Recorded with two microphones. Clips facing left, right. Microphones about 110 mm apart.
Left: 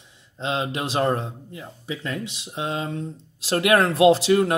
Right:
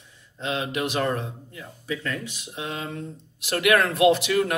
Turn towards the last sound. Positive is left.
turn(degrees=30)  # may be behind; listen again after turning